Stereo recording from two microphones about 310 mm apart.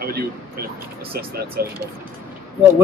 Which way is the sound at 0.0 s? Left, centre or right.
Right.